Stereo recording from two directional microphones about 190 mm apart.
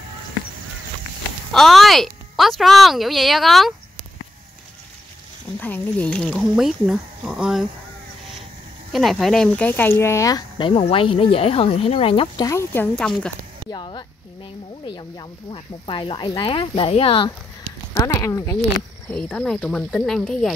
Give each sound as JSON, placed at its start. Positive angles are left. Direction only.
{"t": 1.5, "sound": "a woman's voice", "side_deg": 0}
{"t": 5.6, "sound": "speech", "side_deg": 10}
{"t": 8.9, "sound": "speech", "side_deg": 0}
{"t": 12.4, "sound": "speech", "side_deg": 10}
{"t": 13.7, "sound": "speech", "side_deg": 25}
{"t": 17.9, "sound": "speech", "side_deg": 15}
{"t": 19.0, "sound": "speech", "side_deg": 5}